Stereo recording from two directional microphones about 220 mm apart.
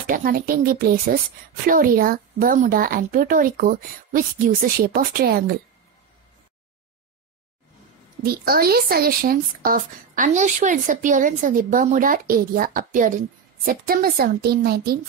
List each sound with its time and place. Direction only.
0.0 s speech: 40° right (ahead or behind)
8.2 s a woman's voice: 45° right (ahead or behind)